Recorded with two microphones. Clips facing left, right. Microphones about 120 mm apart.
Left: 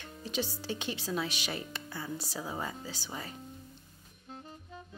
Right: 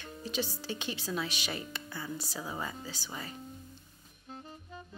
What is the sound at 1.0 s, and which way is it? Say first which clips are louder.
Speech: left 1 dB; 35° left (ahead or behind).